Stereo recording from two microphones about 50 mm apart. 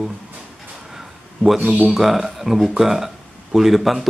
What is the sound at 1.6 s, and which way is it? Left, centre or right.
Speech, right.